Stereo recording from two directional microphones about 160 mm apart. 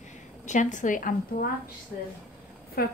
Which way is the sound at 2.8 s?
70° left (ahead or behind).